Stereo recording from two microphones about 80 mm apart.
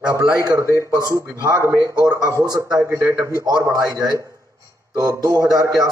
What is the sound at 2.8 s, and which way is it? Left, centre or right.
A man's voice, right.